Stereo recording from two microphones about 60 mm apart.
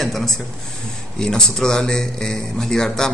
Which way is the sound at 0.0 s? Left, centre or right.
Centre.